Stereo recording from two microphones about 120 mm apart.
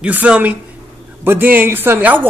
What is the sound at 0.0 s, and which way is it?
Speech, 10° right (ahead or behind).